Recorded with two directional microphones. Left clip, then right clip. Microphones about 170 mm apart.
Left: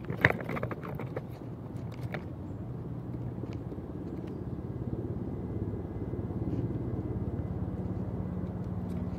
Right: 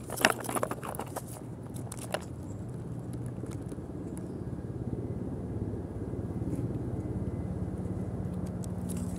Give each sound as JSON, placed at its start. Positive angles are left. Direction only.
{"t": 0.2, "sound": "vehicle", "side_deg": -60}